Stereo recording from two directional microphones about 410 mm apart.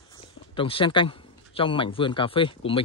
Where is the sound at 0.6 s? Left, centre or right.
Centre.